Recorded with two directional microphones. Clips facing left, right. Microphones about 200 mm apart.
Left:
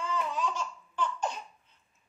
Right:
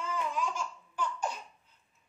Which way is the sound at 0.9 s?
10° right (ahead or behind).